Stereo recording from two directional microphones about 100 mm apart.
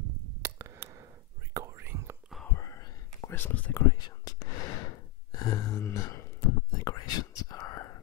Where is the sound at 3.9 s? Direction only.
40° left (ahead or behind).